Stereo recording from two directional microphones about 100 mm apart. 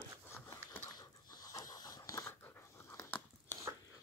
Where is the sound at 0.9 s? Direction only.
40° left (ahead or behind).